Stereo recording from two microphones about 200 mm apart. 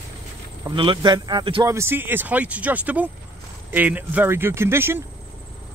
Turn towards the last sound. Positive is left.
turn(degrees=-10)  # may be behind; listen again after turning